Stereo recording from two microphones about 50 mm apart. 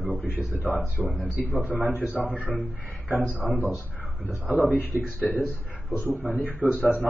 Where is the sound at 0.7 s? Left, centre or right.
Centre.